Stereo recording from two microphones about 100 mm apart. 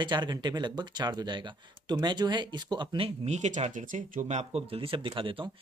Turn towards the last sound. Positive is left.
turn(degrees=-60)  # may be behind; listen again after turning